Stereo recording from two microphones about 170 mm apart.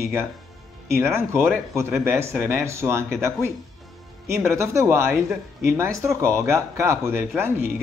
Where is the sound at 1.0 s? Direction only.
15° right (ahead or behind).